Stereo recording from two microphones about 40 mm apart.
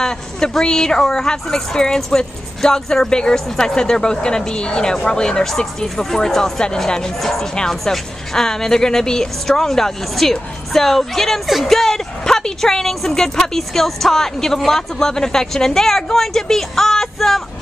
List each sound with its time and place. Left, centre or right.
0.0 s speech: centre